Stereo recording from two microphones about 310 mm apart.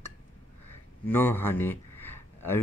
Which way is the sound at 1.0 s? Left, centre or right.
Centre.